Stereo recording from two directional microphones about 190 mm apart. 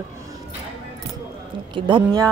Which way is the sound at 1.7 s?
25° right (ahead or behind).